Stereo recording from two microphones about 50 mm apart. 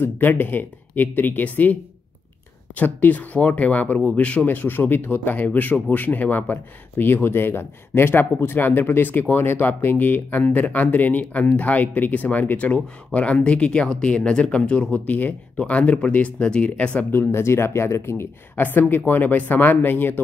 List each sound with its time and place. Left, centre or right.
0.0 s speech: left
4.5 s speech: left
17.1 s speech: left
18.6 s speech: left